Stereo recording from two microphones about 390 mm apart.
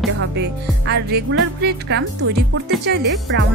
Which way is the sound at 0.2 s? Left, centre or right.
Right.